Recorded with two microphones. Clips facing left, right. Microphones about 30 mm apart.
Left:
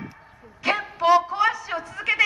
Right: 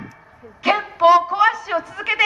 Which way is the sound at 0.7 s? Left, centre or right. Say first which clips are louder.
Right 6 dB; centre.